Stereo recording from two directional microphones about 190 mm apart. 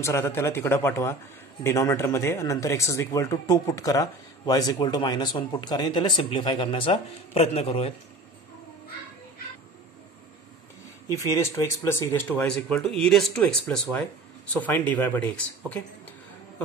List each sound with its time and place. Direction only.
0.0 s speech: 15° left (ahead or behind); by 7.9 s 30° left (ahead or behind)
11.1 s speech: 15° left (ahead or behind)